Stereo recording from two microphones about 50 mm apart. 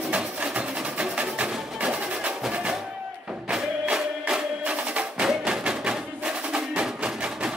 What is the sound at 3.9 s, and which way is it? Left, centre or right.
Music, right.